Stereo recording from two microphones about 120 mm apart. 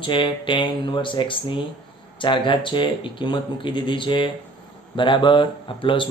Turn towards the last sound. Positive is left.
turn(degrees=45)  # may be behind; listen again after turning